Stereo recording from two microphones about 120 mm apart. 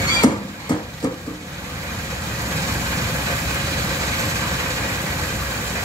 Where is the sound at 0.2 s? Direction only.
35° left (ahead or behind).